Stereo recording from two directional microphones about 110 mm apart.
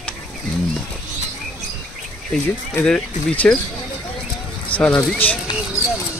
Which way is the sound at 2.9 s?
5° left (ahead or behind).